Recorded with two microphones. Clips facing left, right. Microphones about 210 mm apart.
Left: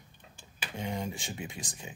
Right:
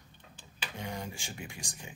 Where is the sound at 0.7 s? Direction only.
20° left (ahead or behind).